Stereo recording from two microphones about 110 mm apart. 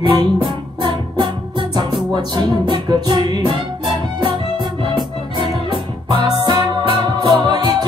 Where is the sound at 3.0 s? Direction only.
40° right (ahead or behind).